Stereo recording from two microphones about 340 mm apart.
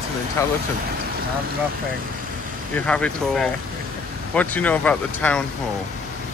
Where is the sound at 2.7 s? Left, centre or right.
Centre.